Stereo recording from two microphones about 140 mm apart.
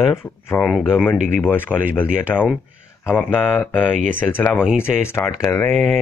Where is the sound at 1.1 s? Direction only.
65° right (ahead or behind).